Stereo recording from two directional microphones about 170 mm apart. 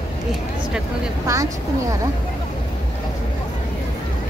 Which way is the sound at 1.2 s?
20° right (ahead or behind).